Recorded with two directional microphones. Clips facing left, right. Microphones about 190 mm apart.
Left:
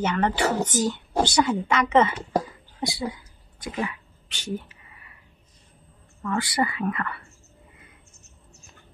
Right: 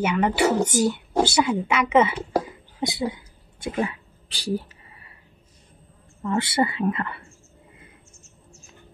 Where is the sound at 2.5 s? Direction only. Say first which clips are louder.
Right 2 dB; 20° right (ahead or behind).